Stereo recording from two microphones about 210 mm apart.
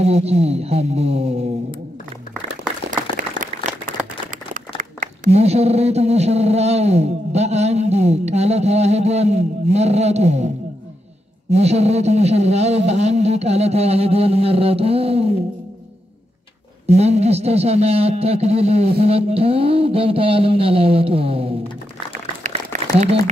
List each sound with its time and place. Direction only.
0.0 s music: 30° right (ahead or behind)
3.2 s a sound: 40° right (ahead or behind)
4.6 s speech: 40° right (ahead or behind)
11.5 s speech: 30° right (ahead or behind)
16.8 s a man's voice: 30° right (ahead or behind)
22.4 s a sound: 35° right (ahead or behind)